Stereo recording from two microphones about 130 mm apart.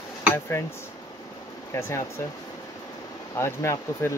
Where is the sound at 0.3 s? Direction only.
20° left (ahead or behind).